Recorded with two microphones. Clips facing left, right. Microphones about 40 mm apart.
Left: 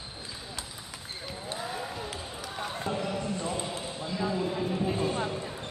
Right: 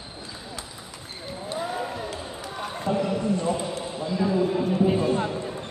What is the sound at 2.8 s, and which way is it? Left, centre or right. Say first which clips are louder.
Clip-clop: right 9 dB; centre.